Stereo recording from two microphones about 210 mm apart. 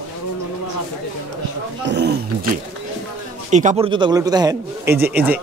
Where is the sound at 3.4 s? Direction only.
35° right (ahead or behind).